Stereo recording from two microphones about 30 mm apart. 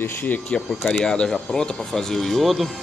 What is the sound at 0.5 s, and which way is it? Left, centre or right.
Speech, left.